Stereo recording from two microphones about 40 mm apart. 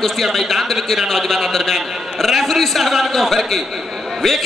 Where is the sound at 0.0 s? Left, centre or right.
Centre.